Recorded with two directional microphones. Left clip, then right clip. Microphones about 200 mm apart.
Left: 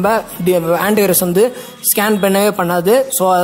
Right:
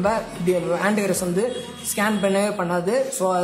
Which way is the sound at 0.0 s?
40° left (ahead or behind).